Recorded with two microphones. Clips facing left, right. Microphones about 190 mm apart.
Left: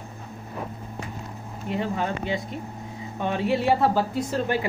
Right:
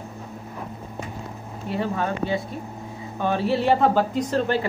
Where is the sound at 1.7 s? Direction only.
20° left (ahead or behind).